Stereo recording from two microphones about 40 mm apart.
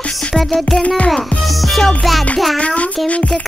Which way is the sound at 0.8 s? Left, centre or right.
Left.